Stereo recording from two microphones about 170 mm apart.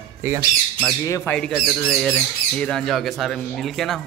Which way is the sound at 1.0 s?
15° left (ahead or behind).